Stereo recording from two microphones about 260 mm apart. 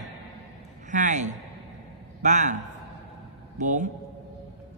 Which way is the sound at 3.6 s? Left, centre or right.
Right.